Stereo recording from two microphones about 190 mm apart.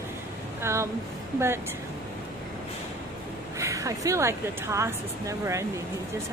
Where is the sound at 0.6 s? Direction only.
15° right (ahead or behind).